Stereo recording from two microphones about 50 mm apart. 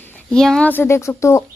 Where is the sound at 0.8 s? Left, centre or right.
Left.